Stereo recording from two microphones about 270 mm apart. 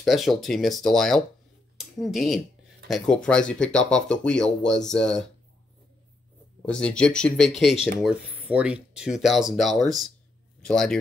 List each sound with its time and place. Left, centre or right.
0.0 s speech: centre
6.6 s speech: centre